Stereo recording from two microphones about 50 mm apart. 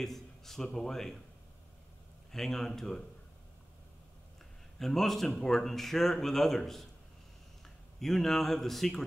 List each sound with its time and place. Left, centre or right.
0.0 s speech: centre
2.3 s speech: centre
4.7 s a man's voice: centre